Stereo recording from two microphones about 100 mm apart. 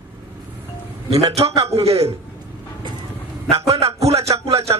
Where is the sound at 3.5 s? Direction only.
90° right.